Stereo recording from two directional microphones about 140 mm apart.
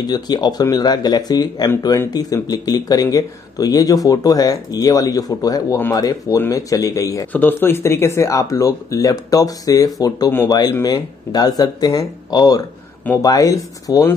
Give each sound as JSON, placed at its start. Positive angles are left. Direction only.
{"t": 0.0, "sound": "speech", "side_deg": 30}